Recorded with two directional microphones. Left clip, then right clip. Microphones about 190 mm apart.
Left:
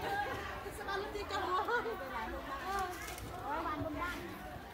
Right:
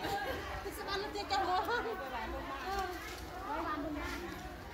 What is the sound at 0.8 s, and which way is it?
Chatter, 40° right (ahead or behind).